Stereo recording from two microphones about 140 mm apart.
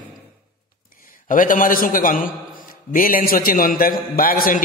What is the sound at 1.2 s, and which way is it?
A man's voice, 75° left (ahead or behind).